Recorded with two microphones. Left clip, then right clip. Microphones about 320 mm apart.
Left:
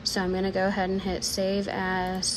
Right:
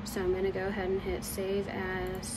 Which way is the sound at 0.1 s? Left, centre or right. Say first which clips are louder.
Even; left.